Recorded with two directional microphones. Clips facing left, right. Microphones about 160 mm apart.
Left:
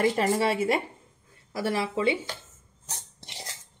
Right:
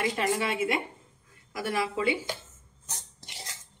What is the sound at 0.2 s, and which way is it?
Speech, 35° left (ahead or behind).